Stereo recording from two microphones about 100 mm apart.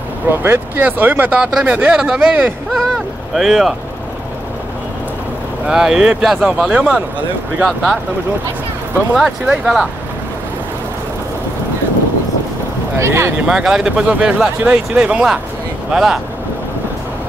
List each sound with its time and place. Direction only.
0.4 s speech: 20° right (ahead or behind); by 3.7 s centre (ahead or behind)
5.7 s speech: 5° right (ahead or behind)
9.1 s speech: 5° right (ahead or behind)
13.0 s speech: 25° right (ahead or behind)
13.5 s speech: 5° right (ahead or behind)